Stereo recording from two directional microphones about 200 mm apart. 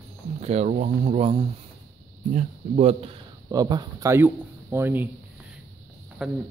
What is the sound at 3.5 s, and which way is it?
Speech, 20° right (ahead or behind).